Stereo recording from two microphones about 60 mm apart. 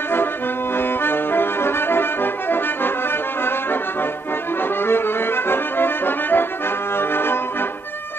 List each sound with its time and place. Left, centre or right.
0.7 s music: left
4.8 s accordion: left
7.0 s music: left